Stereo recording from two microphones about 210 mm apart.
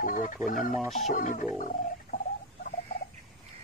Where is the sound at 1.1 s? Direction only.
40° left (ahead or behind).